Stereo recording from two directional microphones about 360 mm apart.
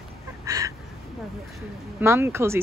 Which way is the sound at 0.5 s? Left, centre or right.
Centre.